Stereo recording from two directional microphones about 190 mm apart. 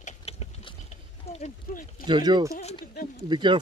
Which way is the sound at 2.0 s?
25° right (ahead or behind).